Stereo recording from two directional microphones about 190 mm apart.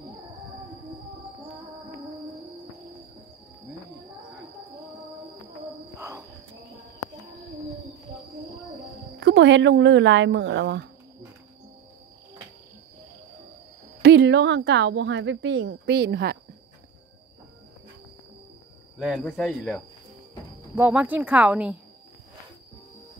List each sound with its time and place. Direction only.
5.9 s cricket: 15° right (ahead or behind)
9.2 s speech: 70° right (ahead or behind)
14.0 s a woman's voice: 65° right (ahead or behind)
18.9 s speech: centre (ahead or behind)
20.7 s speech: 10° right (ahead or behind)